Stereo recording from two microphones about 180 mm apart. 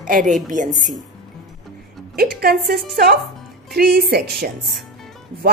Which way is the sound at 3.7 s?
55° right (ahead or behind).